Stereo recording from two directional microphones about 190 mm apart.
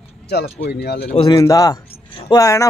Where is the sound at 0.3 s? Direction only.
60° left (ahead or behind).